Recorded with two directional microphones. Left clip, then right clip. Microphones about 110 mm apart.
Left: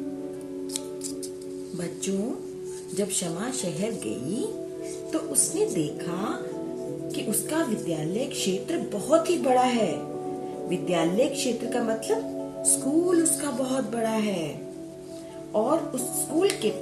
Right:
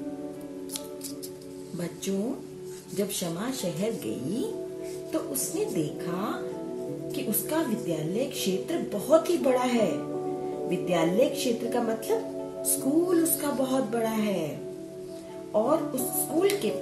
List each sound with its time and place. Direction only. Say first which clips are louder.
3.0 s a woman's voice: left 1 dB; 10° left (ahead or behind)
15.5 s speech: even; 20° left (ahead or behind)